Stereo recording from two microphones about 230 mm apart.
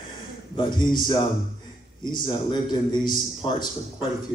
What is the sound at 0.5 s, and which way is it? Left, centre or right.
A man's voice, centre.